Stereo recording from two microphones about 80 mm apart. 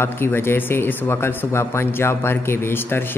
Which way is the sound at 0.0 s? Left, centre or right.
Left.